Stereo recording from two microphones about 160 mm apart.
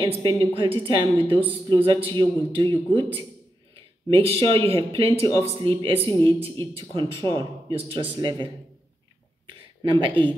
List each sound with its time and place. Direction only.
0.0 s a man's voice: 35° right (ahead or behind)
4.1 s speech: 35° right (ahead or behind)
6.0 s speech: 15° left (ahead or behind)
6.9 s speech: 30° right (ahead or behind)
9.5 s a sound: 30° right (ahead or behind)